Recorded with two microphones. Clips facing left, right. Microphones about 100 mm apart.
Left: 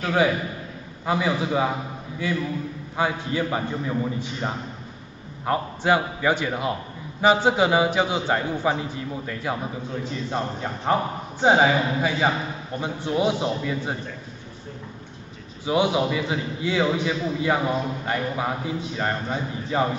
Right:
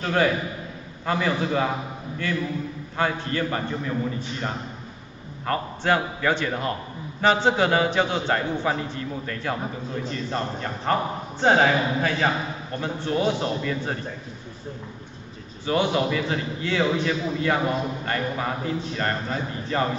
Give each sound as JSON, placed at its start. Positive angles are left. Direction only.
{"t": 1.0, "sound": "a man's voice", "side_deg": 10}
{"t": 15.6, "sound": "a man's voice", "side_deg": 10}